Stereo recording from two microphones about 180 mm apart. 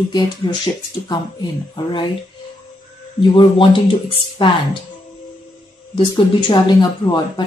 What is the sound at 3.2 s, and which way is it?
Speech, 30° left (ahead or behind).